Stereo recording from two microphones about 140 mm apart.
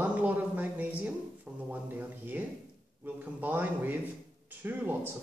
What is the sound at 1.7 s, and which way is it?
Speech, 15° right (ahead or behind).